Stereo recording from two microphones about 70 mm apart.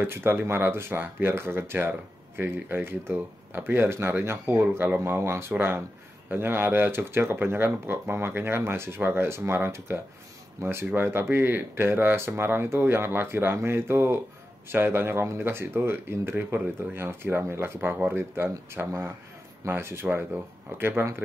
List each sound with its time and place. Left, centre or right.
0.0 s speech: right